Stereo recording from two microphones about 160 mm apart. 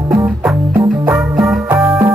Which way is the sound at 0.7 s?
15° right (ahead or behind).